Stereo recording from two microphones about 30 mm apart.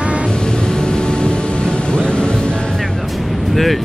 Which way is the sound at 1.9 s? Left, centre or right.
Left.